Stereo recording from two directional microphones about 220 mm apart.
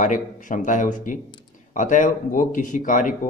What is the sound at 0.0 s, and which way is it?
A man's voice, 35° left (ahead or behind).